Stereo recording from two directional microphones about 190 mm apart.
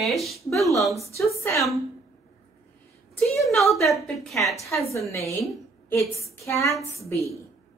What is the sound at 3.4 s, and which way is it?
Speech, centre (ahead or behind).